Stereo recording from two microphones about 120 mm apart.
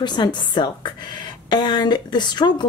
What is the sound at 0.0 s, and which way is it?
Speech, 40° left (ahead or behind).